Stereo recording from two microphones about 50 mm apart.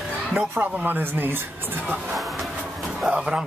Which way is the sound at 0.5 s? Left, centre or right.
Right.